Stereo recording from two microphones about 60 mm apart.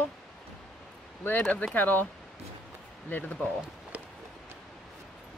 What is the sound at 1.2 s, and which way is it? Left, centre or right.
Speech, left.